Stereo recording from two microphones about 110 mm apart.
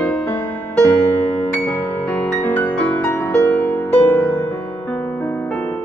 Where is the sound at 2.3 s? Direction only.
15° left (ahead or behind).